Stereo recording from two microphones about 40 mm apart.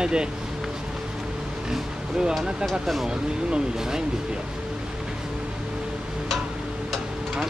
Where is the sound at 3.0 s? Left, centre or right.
Centre.